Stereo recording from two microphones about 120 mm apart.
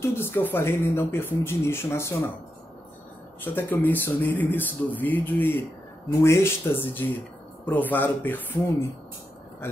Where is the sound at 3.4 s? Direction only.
15° left (ahead or behind).